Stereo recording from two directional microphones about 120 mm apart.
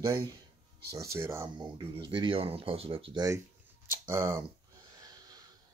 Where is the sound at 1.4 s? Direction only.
40° right (ahead or behind).